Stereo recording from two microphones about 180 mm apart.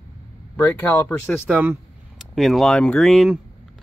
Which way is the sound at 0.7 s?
10° left (ahead or behind).